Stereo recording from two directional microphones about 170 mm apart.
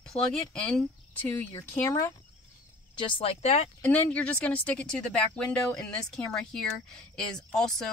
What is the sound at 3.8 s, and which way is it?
Speech, 10° left (ahead or behind).